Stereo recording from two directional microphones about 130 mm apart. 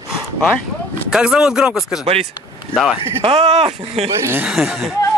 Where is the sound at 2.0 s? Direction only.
50° right (ahead or behind).